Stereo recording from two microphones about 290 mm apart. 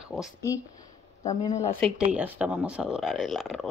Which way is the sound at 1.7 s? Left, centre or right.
Centre.